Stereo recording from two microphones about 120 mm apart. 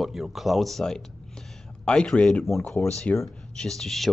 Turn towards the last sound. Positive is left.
turn(degrees=0)  # may be behind; listen again after turning